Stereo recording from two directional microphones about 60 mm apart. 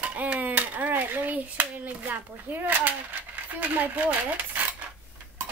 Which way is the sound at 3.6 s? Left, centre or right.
Right.